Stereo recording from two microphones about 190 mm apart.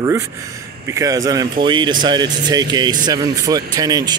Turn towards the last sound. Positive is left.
turn(degrees=-20)  # may be behind; listen again after turning